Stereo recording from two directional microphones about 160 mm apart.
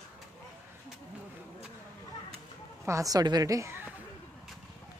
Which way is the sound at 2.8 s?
20° right (ahead or behind).